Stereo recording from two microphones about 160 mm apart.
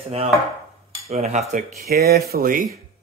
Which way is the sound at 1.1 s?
40° right (ahead or behind).